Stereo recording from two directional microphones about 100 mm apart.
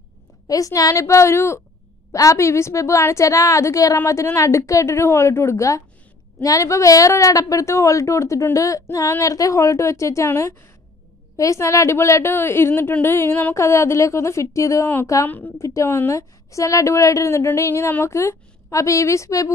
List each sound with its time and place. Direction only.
0.5 s a woman's voice: 35° left (ahead or behind)
15.2 s a woman's voice: 20° left (ahead or behind)
15.6 s a woman's voice: 30° left (ahead or behind)